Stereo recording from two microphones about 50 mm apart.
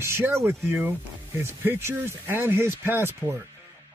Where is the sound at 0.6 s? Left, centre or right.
Right.